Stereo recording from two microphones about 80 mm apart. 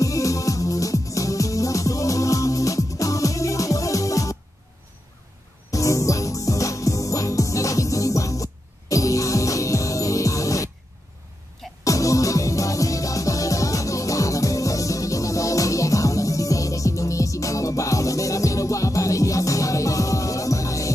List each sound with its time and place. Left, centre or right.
0.0 s music: left
5.7 s music: left
11.8 s music: left